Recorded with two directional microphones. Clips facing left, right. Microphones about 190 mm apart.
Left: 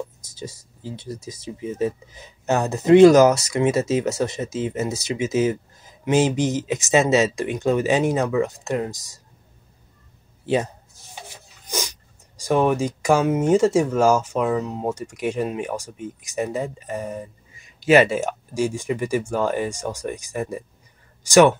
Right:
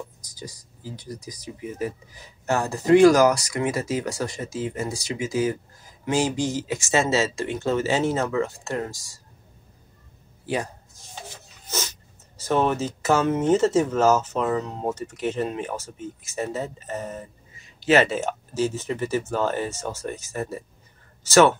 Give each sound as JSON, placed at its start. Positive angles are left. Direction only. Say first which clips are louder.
{"t": 0.2, "sound": "speech", "louder": "left 4 dB", "side_deg": 25}
{"t": 10.4, "sound": "speech", "louder": "left 6 dB", "side_deg": 25}
{"t": 11.6, "sound": "a sound", "louder": "left 2 dB", "side_deg": 15}
{"t": 12.4, "sound": "speech", "louder": "left 3 dB", "side_deg": 10}